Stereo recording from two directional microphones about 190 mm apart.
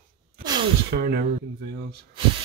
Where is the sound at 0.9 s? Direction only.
55° right (ahead or behind).